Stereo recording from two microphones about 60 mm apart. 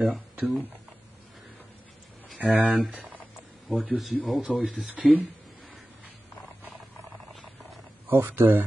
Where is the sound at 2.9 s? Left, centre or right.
Right.